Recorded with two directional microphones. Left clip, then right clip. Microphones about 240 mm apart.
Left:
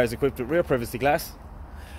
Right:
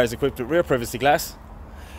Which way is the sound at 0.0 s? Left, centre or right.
Centre.